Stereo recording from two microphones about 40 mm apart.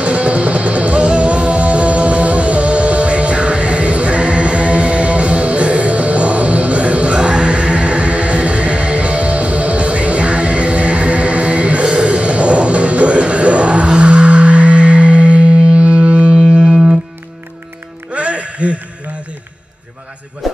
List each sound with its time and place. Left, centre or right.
0.0 s music: right
18.1 s music: right
20.4 s music: centre